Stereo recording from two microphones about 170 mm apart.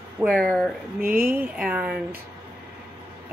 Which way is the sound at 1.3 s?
10° right (ahead or behind).